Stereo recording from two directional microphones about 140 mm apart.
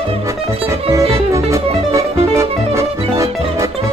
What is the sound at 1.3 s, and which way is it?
Music, 20° right (ahead or behind).